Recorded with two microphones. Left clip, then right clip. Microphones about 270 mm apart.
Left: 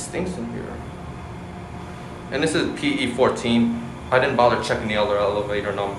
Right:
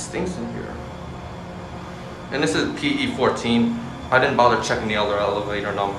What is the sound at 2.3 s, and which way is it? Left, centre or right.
Speech, centre.